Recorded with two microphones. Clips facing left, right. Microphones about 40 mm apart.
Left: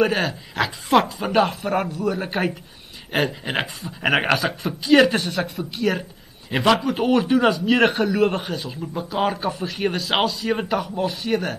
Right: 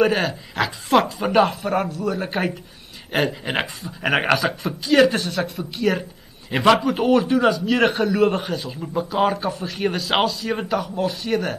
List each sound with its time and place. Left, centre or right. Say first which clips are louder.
0.0 s a man's voice: right 1 dB; centre
7.2 s a man's voice: even; centre